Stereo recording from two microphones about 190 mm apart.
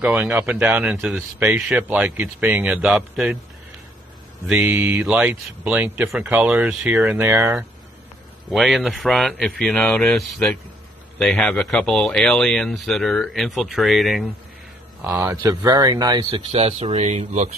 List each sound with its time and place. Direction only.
0.0 s speech: 5° right (ahead or behind)
4.5 s speech: 10° right (ahead or behind)
8.5 s speech: centre (ahead or behind)
15.1 s speech: 15° right (ahead or behind)
16.3 s speech: 30° right (ahead or behind)